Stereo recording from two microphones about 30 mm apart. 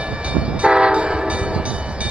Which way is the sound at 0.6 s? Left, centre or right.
Right.